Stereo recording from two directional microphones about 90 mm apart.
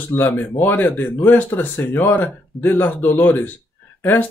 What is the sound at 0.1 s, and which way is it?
Speech, 25° left (ahead or behind).